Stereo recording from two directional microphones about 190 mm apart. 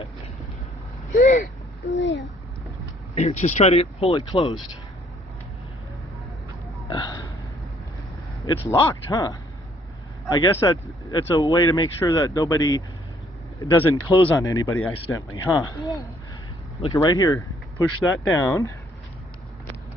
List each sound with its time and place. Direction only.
1.1 s speech: 45° left (ahead or behind)
2.0 s a child's voice: 70° left (ahead or behind)
3.2 s speech: 35° left (ahead or behind)
6.9 s burping: 20° left (ahead or behind)
8.5 s speech: 20° left (ahead or behind)